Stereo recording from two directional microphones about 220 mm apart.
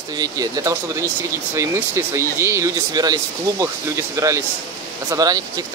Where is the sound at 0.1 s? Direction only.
15° right (ahead or behind).